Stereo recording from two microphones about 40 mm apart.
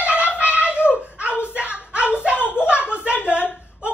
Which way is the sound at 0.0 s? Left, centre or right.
Right.